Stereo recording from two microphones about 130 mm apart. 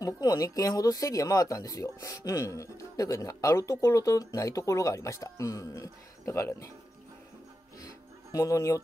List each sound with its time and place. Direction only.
0.0 s speech: 25° left (ahead or behind)
8.3 s speech: 25° left (ahead or behind)